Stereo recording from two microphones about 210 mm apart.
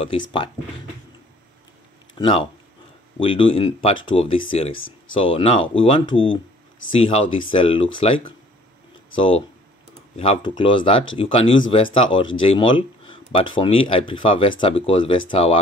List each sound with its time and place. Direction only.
0.0 s speech: 25° left (ahead or behind)
2.1 s speech: 20° left (ahead or behind)
10.1 s speech: 25° left (ahead or behind)